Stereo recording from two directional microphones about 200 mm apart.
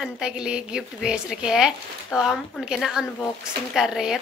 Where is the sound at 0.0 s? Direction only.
5° right (ahead or behind).